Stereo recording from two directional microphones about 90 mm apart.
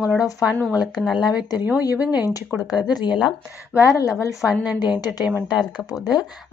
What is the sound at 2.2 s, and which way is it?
Speech, 45° left (ahead or behind).